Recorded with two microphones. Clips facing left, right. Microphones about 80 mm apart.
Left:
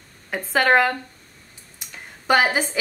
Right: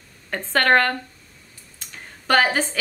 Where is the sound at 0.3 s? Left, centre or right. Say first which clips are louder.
Even; centre.